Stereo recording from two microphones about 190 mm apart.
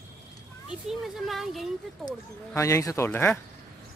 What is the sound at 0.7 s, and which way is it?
Speech, centre (ahead or behind).